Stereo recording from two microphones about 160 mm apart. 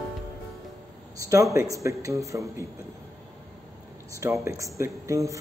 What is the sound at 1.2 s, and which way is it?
A man's voice, 20° right (ahead or behind).